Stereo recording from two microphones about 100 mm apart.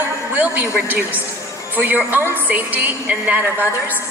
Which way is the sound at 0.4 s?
20° right (ahead or behind).